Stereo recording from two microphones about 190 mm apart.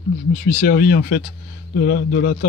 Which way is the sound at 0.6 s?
55° left (ahead or behind).